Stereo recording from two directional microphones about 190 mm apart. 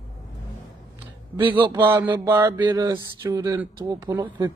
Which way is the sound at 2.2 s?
20° right (ahead or behind).